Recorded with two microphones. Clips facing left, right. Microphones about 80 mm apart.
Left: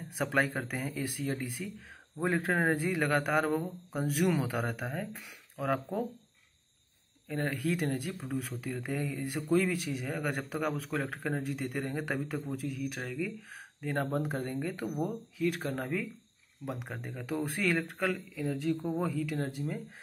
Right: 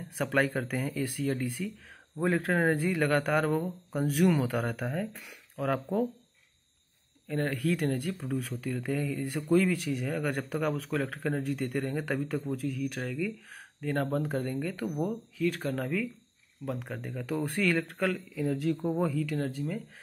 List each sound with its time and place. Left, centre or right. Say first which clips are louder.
0.1 s speech: right 2 dB; centre
7.2 s speech: right 3 dB; centre
19.1 s speech: right 2 dB; centre